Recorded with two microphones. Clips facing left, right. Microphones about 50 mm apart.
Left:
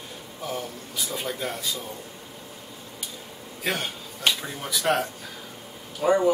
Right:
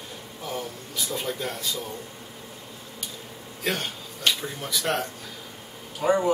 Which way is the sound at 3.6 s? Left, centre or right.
Centre.